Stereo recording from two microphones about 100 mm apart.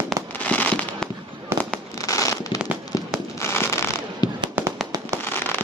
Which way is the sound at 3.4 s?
30° left (ahead or behind).